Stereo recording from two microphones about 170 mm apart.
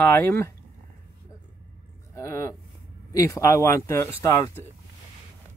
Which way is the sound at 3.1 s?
20° left (ahead or behind).